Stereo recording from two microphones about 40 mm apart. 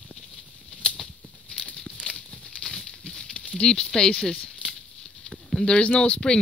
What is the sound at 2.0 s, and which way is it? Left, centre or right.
Crumpling, centre.